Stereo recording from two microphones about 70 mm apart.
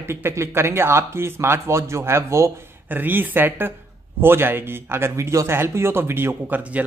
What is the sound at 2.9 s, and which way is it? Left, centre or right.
Speech, right.